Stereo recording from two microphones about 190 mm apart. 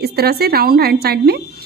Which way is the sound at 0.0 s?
55° right (ahead or behind).